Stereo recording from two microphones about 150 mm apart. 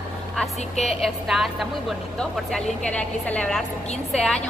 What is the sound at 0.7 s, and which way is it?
Speech, 45° left (ahead or behind).